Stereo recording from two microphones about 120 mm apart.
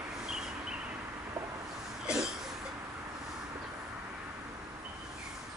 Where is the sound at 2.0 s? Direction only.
5° right (ahead or behind).